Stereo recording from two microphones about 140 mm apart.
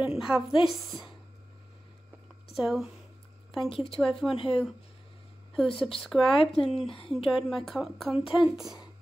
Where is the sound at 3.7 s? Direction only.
40° left (ahead or behind).